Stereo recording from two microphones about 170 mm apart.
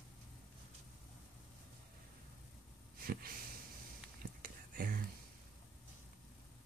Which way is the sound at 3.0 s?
60° right (ahead or behind).